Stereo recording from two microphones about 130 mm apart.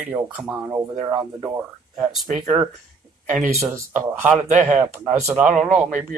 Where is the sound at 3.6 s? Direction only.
20° right (ahead or behind).